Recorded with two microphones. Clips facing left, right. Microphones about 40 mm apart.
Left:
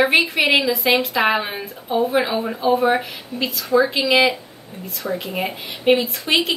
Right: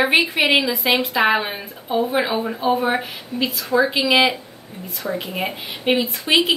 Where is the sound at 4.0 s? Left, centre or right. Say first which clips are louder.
Even; right.